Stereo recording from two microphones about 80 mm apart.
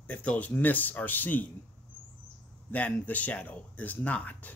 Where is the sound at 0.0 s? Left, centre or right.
Centre.